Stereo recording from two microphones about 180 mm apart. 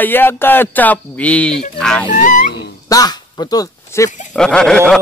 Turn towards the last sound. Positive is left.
turn(degrees=5)  # may be behind; listen again after turning